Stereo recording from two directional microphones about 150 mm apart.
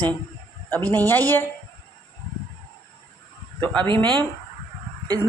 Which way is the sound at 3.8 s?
35° right (ahead or behind).